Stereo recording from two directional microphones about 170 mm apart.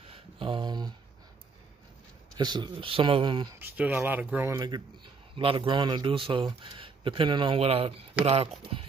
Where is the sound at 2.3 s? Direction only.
25° right (ahead or behind).